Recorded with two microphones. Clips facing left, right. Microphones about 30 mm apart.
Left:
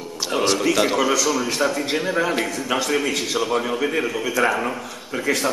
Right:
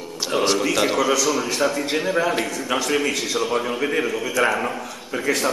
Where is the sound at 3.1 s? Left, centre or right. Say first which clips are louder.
Even; left.